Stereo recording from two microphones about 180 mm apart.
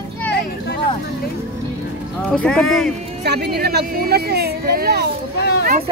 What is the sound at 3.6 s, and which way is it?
Speech, 60° right (ahead or behind).